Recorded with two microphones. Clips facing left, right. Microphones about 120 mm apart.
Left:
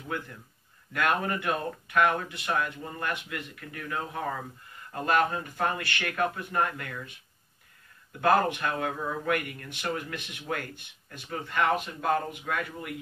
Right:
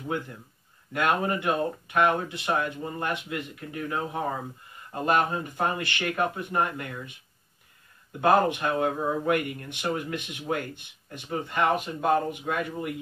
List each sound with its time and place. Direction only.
0.9 s speech: 25° right (ahead or behind)